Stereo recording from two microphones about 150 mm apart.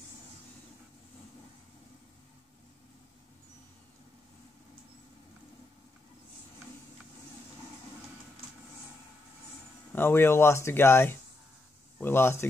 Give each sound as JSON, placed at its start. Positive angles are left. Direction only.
{"t": 9.9, "sound": "speech", "side_deg": 15}